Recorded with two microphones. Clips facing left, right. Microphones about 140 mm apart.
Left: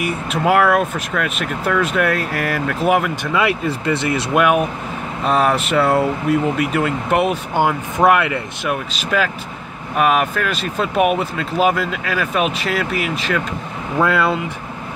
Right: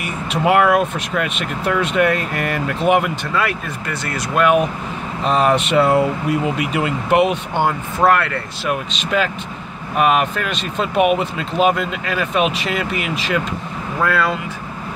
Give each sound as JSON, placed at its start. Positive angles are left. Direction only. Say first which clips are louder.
{"t": 0.0, "sound": "speech", "louder": "left 1 dB", "side_deg": 0}
{"t": 3.3, "sound": "speech", "louder": "left 5 dB", "side_deg": 20}
{"t": 4.4, "sound": "speech", "louder": "right 2 dB", "side_deg": 5}
{"t": 8.6, "sound": "speech", "louder": "right 1 dB", "side_deg": 5}
{"t": 14.0, "sound": "speech", "louder": "left 1 dB", "side_deg": 20}